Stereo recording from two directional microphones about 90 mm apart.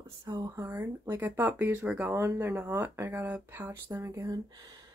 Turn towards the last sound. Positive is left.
turn(degrees=-40)  # may be behind; listen again after turning